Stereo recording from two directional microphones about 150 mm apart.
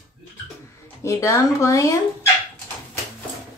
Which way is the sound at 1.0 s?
20° left (ahead or behind).